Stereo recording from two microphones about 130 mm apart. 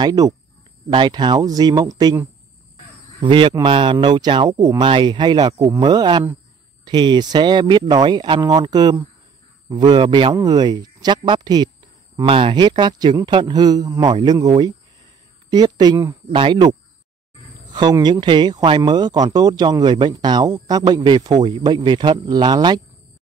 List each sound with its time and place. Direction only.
0.0 s speech: 30° right (ahead or behind)
12.3 s speech: 45° right (ahead or behind)
16.3 s speech: 40° right (ahead or behind)
17.6 s a sound: 35° right (ahead or behind)
18.0 s speech: 35° right (ahead or behind)